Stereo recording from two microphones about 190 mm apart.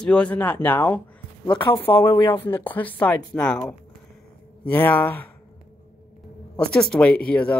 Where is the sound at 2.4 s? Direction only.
10° left (ahead or behind).